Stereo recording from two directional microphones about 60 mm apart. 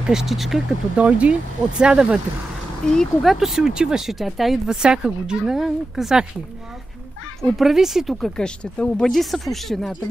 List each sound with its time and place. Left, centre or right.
0.0 s speech: centre
0.9 s speech: right
2.9 s speech: centre
3.3 s speech: centre
4.6 s speech: centre
7.5 s speech: centre
8.2 s speech: centre
9.1 s speech: centre